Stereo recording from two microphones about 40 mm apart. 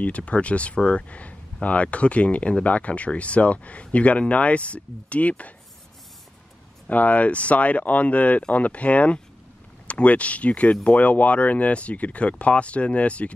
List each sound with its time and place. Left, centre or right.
0.0 s speech: left
6.9 s speech: left